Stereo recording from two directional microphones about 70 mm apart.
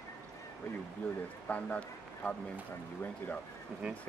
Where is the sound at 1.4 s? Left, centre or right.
Left.